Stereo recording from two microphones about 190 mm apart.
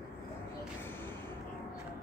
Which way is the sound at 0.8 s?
10° left (ahead or behind).